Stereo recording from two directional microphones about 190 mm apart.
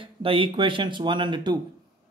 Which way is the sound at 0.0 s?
25° right (ahead or behind).